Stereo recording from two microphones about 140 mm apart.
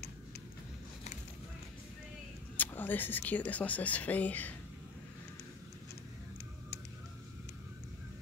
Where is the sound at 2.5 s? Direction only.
15° left (ahead or behind).